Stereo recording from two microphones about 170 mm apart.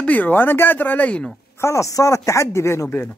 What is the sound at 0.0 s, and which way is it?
Speech, 10° left (ahead or behind).